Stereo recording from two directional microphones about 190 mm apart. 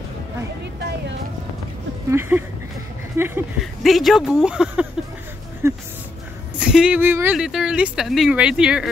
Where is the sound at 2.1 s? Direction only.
10° right (ahead or behind).